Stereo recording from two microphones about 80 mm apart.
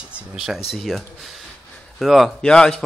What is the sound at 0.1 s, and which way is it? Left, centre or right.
Speech, centre.